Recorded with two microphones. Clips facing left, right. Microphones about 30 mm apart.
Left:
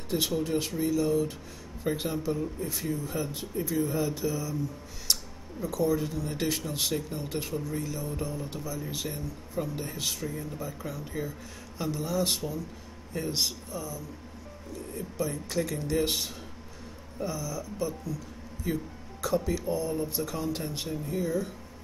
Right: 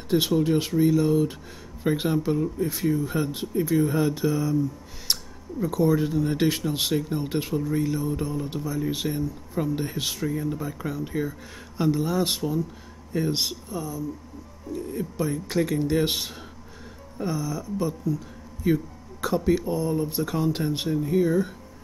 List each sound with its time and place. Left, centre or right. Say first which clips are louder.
0.4 s speech: right 7 dB; right
3.2 s speech: right 6 dB; right